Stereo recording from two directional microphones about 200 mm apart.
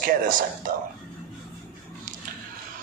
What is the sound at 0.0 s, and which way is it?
Speech, 45° right (ahead or behind).